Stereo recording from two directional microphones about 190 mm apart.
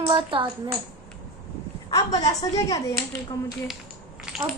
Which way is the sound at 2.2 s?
20° left (ahead or behind).